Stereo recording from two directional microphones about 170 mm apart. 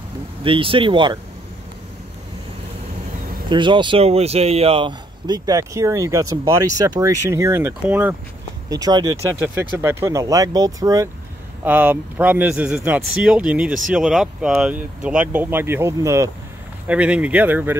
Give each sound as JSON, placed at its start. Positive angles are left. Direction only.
{"t": 0.4, "sound": "speech", "side_deg": -30}
{"t": 3.4, "sound": "speech", "side_deg": -30}
{"t": 8.6, "sound": "speech", "side_deg": -20}